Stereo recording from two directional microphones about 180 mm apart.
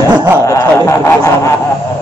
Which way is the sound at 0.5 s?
15° left (ahead or behind).